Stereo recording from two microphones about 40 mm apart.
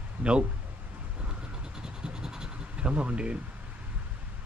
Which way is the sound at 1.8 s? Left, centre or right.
Centre.